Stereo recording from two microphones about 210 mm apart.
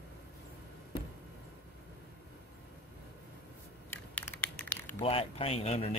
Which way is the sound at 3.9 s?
10° left (ahead or behind).